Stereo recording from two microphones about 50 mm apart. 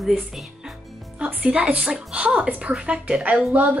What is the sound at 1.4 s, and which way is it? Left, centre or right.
Speech, right.